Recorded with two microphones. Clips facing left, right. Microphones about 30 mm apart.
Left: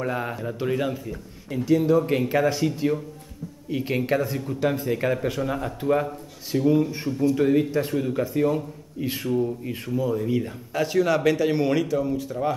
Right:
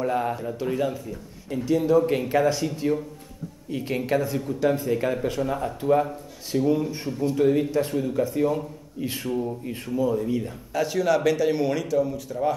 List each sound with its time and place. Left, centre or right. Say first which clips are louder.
0.0 s speech: right 2 dB; centre
0.6 s speech: left 3 dB; centre
4.6 s speech: right 1 dB; centre